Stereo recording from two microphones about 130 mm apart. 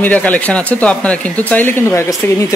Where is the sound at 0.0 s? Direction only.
10° left (ahead or behind).